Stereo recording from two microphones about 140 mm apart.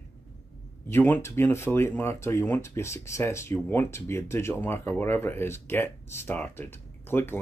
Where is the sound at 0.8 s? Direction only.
15° left (ahead or behind).